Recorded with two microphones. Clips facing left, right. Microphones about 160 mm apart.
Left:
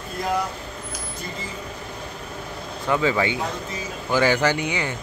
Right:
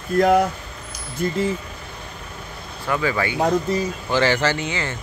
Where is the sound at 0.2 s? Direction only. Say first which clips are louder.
Right 9 dB; 60° right (ahead or behind).